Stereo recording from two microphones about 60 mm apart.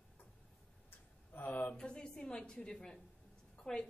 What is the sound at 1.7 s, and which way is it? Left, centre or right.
A woman's voice, centre.